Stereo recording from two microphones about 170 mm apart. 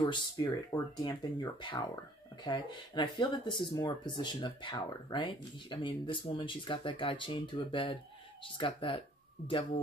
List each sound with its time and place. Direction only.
0.0 s speech: 25° left (ahead or behind)